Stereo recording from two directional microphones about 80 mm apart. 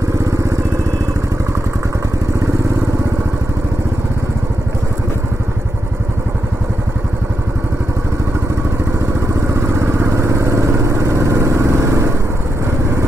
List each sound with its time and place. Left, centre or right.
0.2 s vehicle: right
9.3 s vehicle: right